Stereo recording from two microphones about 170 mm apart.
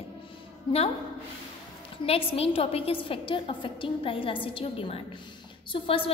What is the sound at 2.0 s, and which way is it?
A woman's voice, 35° left (ahead or behind).